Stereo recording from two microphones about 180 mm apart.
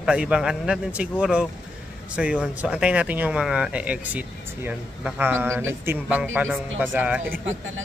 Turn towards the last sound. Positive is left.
turn(degrees=-5)  # may be behind; listen again after turning